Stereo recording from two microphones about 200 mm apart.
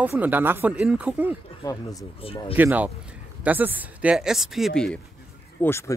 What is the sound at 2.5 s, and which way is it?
Speech, 10° right (ahead or behind).